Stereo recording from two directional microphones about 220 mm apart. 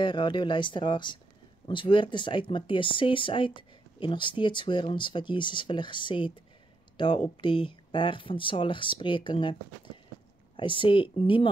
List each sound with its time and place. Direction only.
0.0 s speech: 20° left (ahead or behind)